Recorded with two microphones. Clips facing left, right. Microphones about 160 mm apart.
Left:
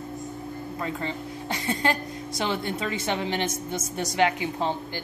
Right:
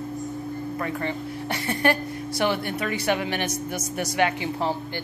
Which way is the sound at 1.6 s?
20° left (ahead or behind).